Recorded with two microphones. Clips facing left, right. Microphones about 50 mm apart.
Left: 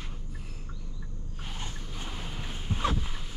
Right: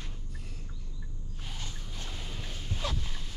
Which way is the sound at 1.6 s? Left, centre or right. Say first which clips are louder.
Left 3 dB; left.